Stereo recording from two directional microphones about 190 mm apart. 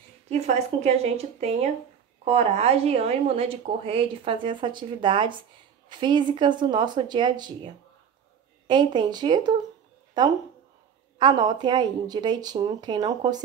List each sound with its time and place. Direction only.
0.3 s speech: 35° right (ahead or behind)
11.1 s speech: 20° right (ahead or behind)